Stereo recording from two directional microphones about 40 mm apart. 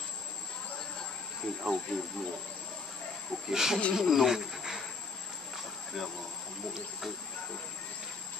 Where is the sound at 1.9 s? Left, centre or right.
Centre.